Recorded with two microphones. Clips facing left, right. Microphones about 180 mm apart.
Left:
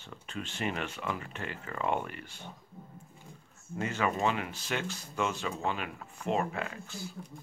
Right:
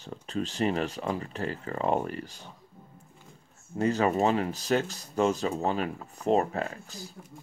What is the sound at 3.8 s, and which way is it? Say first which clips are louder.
Speech: right 6 dB; 35° right (ahead or behind).